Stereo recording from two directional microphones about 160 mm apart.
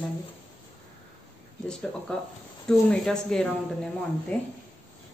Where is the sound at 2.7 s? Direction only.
5° left (ahead or behind).